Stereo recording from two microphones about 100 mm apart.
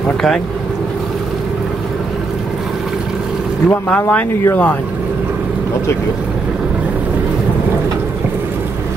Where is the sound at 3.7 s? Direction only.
20° left (ahead or behind).